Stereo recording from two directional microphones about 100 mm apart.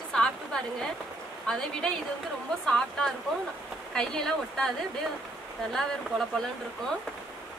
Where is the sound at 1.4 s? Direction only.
5° left (ahead or behind).